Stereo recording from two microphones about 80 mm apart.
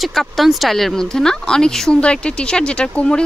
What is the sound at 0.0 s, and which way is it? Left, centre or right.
Speech, centre.